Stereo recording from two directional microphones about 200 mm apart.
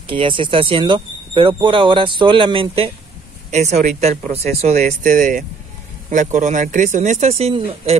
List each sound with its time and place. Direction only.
0.0 s speech: 25° right (ahead or behind)
4.7 s speech: 45° right (ahead or behind)